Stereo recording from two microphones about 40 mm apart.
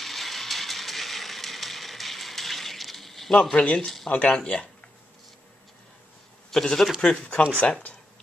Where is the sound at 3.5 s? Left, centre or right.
Left.